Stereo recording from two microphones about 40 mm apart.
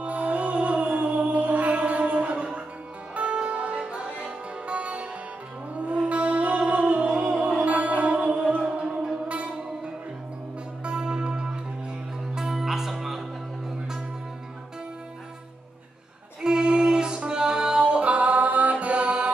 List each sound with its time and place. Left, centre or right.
0.0 s music: right
6.0 s music: right
10.8 s music: right
12.4 s music: centre
16.4 s music: right